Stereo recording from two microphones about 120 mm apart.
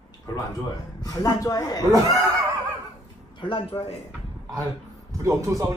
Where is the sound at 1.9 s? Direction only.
30° right (ahead or behind).